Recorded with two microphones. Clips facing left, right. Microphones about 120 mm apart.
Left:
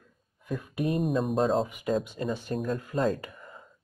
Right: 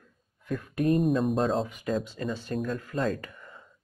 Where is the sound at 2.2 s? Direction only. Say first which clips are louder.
Left 1 dB; 25° left (ahead or behind).